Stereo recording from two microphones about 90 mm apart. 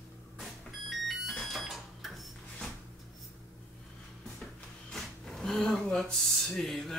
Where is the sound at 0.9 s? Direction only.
Centre (ahead or behind).